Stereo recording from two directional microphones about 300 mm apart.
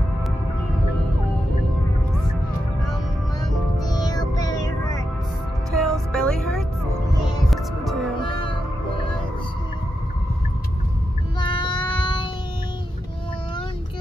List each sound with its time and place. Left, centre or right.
4.0 s a sound: centre
5.7 s music: centre
8.2 s music: centre
11.3 s child singing: centre